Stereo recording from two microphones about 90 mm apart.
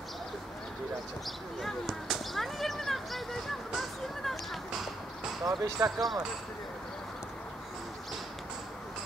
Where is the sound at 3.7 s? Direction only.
Centre (ahead or behind).